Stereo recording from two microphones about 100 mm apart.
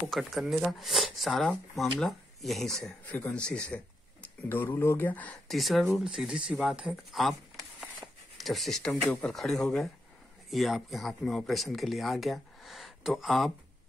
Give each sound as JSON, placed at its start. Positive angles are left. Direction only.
{"t": 0.1, "sound": "speech", "side_deg": 0}
{"t": 3.1, "sound": "speech", "side_deg": 15}
{"t": 5.5, "sound": "speech", "side_deg": 0}
{"t": 8.4, "sound": "speech", "side_deg": 0}